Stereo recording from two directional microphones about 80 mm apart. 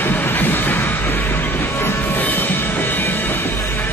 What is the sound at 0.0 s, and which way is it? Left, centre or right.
Train, left.